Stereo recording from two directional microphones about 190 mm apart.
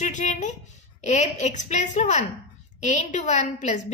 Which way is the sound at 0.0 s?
40° left (ahead or behind).